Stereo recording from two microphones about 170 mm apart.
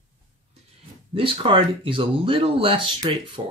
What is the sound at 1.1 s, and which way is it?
Speech, 30° right (ahead or behind).